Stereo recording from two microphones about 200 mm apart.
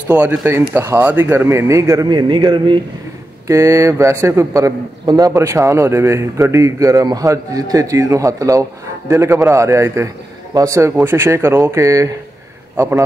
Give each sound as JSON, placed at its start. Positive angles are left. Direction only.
{"t": 0.1, "sound": "a man's voice", "side_deg": -5}